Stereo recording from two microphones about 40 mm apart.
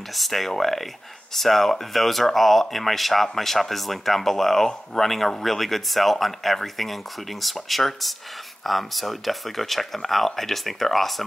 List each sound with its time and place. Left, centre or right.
0.1 s speech: centre